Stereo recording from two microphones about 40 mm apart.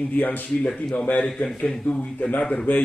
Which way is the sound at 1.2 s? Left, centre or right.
Centre.